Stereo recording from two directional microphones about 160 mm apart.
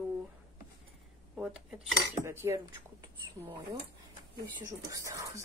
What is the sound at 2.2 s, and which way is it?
Speech, 15° right (ahead or behind).